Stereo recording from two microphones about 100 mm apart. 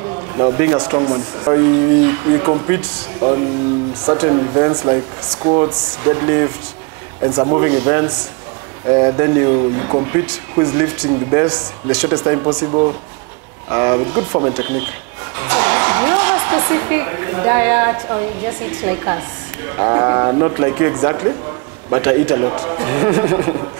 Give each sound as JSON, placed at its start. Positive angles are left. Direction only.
{"t": 0.4, "sound": "speech", "side_deg": -30}